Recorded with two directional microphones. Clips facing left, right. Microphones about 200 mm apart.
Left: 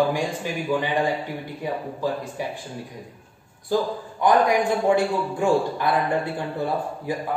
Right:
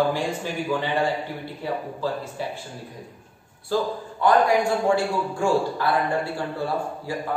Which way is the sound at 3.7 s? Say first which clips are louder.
Left 1 dB; 15° left (ahead or behind).